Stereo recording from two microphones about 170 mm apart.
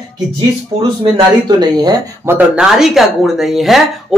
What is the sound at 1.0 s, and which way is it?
Speech, 25° right (ahead or behind).